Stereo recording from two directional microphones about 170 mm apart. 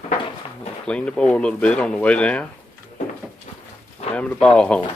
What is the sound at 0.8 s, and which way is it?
Speech, 5° left (ahead or behind).